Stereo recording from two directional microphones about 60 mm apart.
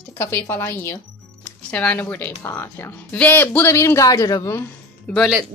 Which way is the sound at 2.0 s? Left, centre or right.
Left.